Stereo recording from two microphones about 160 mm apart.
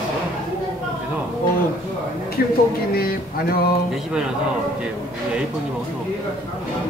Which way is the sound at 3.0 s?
70° left (ahead or behind).